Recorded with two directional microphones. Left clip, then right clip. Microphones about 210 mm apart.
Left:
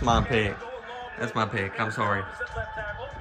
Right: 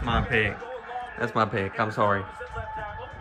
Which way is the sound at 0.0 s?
25° left (ahead or behind).